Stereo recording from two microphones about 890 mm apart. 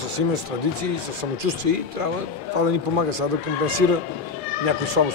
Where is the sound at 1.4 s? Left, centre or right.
Right.